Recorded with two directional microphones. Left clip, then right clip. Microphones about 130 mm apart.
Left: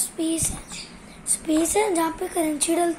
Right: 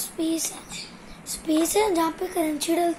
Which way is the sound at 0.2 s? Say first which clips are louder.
Even; 15° left (ahead or behind).